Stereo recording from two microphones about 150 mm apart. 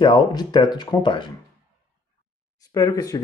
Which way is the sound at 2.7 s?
25° left (ahead or behind).